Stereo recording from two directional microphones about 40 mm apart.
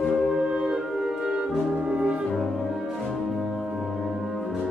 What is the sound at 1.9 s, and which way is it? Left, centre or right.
French horn, right.